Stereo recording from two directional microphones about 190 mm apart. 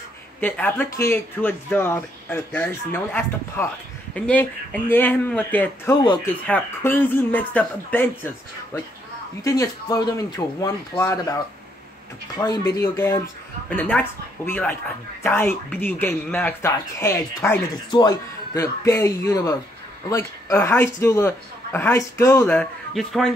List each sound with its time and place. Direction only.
0.4 s speech: 10° left (ahead or behind)
9.4 s speech: 15° left (ahead or behind)
12.4 s speech: 20° left (ahead or behind); by 23.3 s centre (ahead or behind)